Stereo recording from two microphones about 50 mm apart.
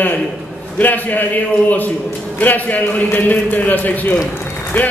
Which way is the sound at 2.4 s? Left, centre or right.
Left.